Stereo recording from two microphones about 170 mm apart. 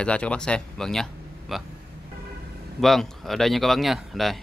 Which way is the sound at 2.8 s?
Centre (ahead or behind).